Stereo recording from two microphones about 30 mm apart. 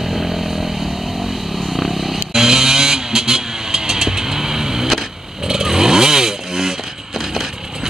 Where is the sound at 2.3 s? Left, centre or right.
Centre.